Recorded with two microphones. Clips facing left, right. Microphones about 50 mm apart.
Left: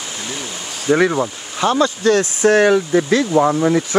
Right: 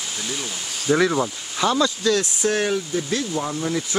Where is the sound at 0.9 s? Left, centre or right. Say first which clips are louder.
Left 4 dB; centre.